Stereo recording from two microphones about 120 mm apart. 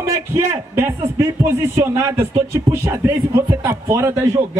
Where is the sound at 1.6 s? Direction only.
20° right (ahead or behind).